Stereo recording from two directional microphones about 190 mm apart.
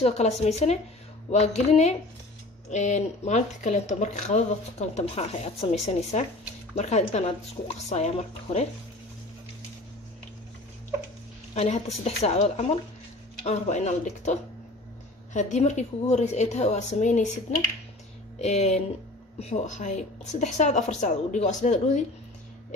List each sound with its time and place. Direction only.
0.0 s speech: 35° left (ahead or behind)
11.5 s speech: 35° left (ahead or behind)
18.4 s speech: 35° left (ahead or behind)